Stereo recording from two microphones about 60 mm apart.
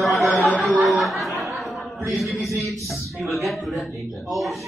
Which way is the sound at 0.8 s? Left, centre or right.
Centre.